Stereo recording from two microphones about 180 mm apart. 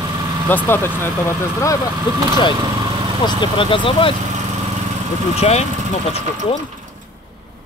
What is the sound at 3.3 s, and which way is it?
Speech, 25° left (ahead or behind).